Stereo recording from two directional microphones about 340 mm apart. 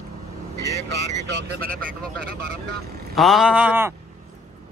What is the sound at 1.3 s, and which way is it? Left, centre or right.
Speech, right.